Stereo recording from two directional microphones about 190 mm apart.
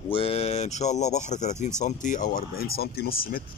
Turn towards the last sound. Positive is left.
turn(degrees=50)  # may be behind; listen again after turning